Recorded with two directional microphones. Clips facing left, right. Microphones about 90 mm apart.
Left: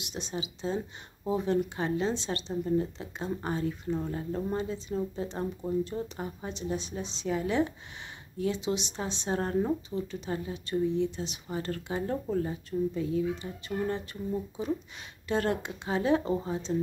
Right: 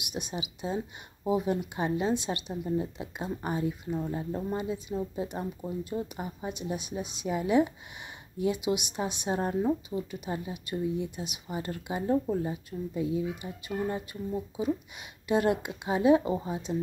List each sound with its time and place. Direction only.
0.1 s speech: 15° right (ahead or behind)